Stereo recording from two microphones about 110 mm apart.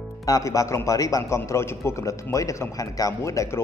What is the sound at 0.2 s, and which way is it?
A man's voice, 30° left (ahead or behind).